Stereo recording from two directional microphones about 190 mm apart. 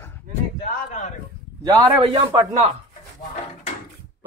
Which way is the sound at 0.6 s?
40° left (ahead or behind).